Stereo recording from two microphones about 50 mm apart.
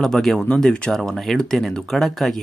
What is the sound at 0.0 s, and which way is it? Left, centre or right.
Speech, centre.